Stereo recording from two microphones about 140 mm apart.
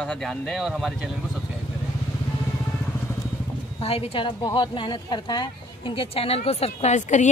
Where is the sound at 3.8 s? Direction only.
45° left (ahead or behind).